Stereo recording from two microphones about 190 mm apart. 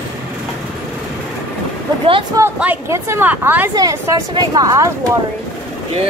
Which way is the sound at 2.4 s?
10° right (ahead or behind).